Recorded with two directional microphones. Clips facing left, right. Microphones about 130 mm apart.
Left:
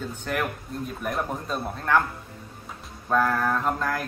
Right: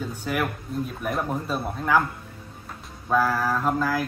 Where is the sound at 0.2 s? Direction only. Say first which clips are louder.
Right 1 dB; 5° right (ahead or behind).